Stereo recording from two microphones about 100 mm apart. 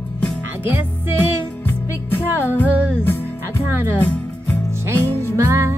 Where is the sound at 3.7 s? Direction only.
20° right (ahead or behind).